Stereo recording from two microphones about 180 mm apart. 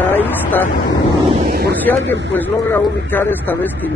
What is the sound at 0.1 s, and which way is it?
Vehicle, 10° left (ahead or behind).